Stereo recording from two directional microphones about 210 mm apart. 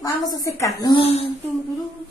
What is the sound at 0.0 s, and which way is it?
A woman's voice, 15° left (ahead or behind).